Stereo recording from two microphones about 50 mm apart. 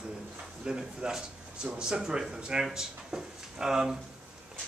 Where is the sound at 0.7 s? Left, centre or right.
Centre.